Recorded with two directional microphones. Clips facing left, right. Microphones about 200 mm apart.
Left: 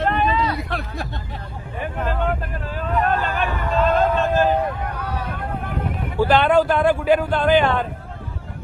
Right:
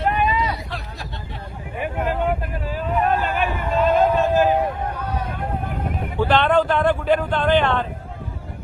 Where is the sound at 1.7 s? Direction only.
15° right (ahead or behind).